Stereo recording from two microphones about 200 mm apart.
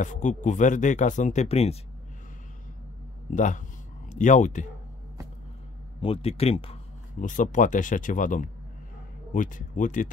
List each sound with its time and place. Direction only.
0.0 s speech: 40° left (ahead or behind)
3.3 s speech: 40° left (ahead or behind)
5.9 s speech: 30° left (ahead or behind)